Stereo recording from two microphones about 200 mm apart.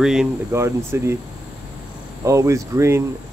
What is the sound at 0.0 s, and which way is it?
Speech, centre (ahead or behind).